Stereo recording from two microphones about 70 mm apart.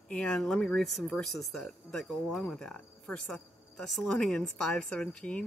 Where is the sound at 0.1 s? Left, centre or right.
Centre.